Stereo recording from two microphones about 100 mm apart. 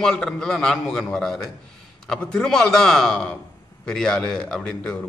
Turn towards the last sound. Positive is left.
turn(degrees=10)  # may be behind; listen again after turning